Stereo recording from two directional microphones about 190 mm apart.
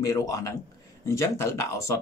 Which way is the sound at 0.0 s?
15° left (ahead or behind).